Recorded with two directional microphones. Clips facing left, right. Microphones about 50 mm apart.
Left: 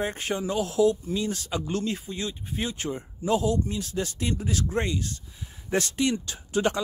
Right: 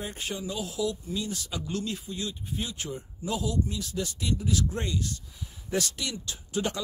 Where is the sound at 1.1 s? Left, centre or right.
Left.